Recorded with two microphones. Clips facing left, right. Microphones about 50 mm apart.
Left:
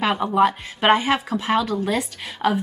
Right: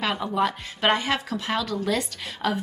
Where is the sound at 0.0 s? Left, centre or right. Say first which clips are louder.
Left 6 dB; centre.